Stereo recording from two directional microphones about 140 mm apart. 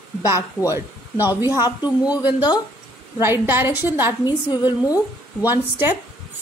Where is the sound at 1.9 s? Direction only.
10° right (ahead or behind).